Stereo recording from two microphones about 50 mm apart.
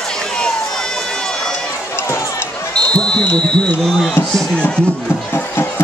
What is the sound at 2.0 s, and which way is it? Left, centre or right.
Run, left.